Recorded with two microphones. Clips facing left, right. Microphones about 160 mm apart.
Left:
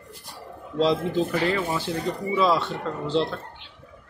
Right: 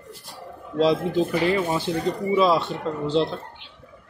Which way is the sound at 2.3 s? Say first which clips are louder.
Right 2 dB; 20° right (ahead or behind).